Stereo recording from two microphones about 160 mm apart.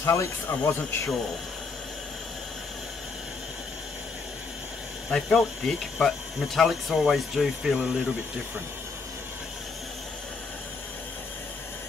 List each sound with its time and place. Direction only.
0.0 s speech: 20° left (ahead or behind)
5.1 s speech: centre (ahead or behind)